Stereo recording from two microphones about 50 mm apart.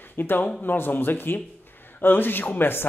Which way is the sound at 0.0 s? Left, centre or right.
Left.